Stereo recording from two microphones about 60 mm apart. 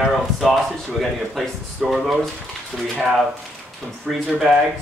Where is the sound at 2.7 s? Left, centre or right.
Centre.